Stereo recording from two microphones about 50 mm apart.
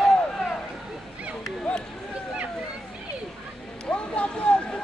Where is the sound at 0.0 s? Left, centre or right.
Centre.